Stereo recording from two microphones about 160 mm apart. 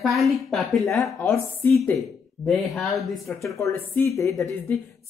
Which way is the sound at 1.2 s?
10° left (ahead or behind).